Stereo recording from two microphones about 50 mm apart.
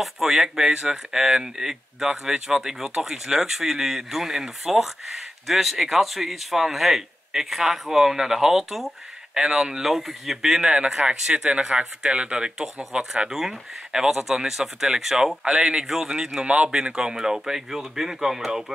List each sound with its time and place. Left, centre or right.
0.0 s speech: centre
10.6 s speech: centre
13.3 s speech: centre
16.3 s speech: right; by 18.7 s centre